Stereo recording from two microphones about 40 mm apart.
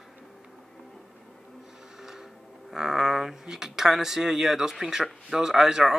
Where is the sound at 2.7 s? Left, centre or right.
Centre.